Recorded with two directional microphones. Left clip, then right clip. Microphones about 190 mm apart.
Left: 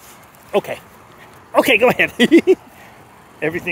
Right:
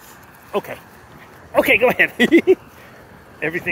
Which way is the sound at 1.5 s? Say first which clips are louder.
Left 1 dB; 50° left (ahead or behind).